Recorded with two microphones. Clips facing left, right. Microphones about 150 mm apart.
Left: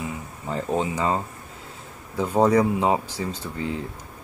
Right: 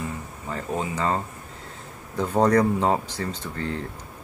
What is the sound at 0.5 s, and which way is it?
Speech, 25° left (ahead or behind).